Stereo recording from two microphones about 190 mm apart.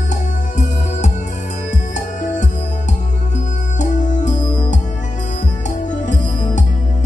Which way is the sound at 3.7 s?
40° left (ahead or behind).